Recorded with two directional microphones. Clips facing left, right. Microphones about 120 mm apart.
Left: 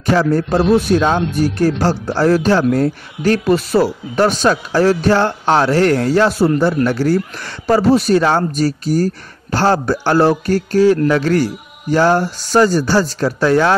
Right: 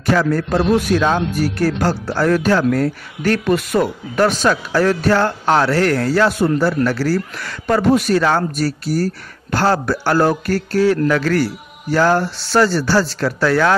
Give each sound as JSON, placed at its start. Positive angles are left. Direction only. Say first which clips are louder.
{"t": 0.1, "sound": "a man's voice", "louder": "left 2 dB", "side_deg": 25}